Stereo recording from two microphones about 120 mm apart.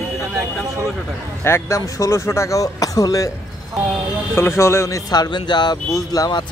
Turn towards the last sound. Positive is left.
turn(degrees=35)  # may be behind; listen again after turning